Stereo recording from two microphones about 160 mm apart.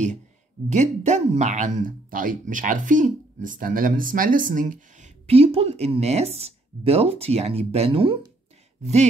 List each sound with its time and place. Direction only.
0.7 s speech: 45° right (ahead or behind)